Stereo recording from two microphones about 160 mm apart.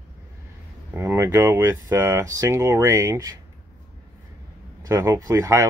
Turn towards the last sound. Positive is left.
turn(degrees=-20)  # may be behind; listen again after turning